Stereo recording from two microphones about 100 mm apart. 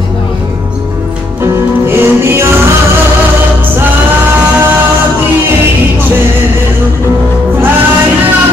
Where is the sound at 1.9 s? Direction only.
25° right (ahead or behind).